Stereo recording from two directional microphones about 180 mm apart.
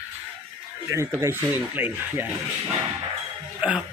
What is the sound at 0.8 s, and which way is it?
Speech, 15° right (ahead or behind).